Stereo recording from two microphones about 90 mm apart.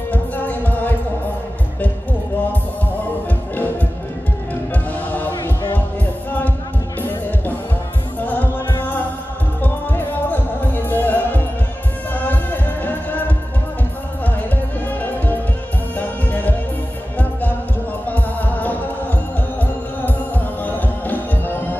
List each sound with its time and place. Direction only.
0.1 s music: 20° left (ahead or behind)
7.0 s music: 20° left (ahead or behind)
14.2 s music: 20° left (ahead or behind)
18.0 s music: 20° left (ahead or behind)